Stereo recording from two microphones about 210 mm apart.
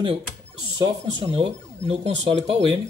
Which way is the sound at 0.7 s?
25° right (ahead or behind).